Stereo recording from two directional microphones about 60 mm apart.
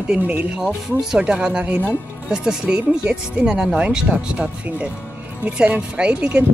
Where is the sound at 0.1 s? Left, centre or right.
Right.